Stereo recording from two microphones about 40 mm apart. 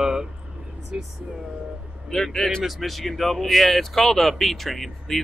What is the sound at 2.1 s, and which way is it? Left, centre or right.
Speech, centre.